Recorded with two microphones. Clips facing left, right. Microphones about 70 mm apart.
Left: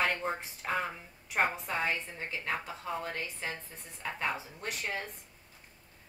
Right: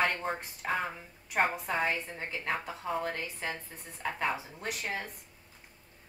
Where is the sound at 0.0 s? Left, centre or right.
Centre.